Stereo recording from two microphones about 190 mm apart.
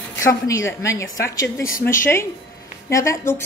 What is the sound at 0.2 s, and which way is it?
Speech, 15° left (ahead or behind).